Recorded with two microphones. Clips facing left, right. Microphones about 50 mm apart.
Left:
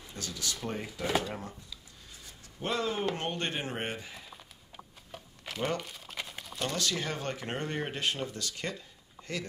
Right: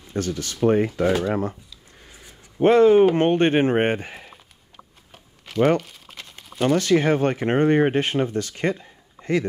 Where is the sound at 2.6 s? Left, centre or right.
Right.